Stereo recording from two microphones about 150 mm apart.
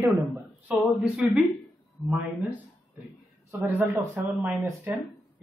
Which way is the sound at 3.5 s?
15° right (ahead or behind).